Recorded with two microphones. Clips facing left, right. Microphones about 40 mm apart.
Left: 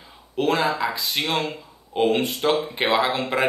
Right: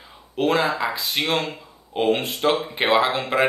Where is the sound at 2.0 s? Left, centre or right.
Right.